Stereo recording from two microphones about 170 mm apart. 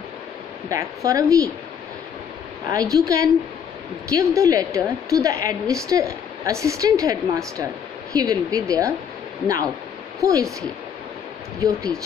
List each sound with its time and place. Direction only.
0.7 s a woman's voice: 20° right (ahead or behind)
2.7 s a woman's voice: 20° right (ahead or behind)
10.2 s a woman's voice: 20° right (ahead or behind)
11.6 s a woman's voice: 20° right (ahead or behind)